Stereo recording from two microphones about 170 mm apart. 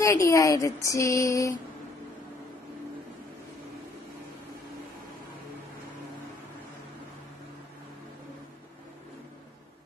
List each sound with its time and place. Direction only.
0.0 s speech: 20° left (ahead or behind)